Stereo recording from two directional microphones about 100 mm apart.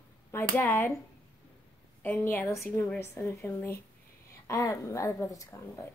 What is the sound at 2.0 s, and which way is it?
A woman's voice, 20° left (ahead or behind).